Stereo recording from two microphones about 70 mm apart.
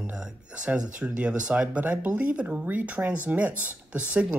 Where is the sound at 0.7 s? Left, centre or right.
Centre.